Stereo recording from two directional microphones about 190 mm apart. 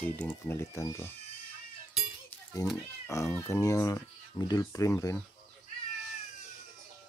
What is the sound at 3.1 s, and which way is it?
Speech, 15° left (ahead or behind).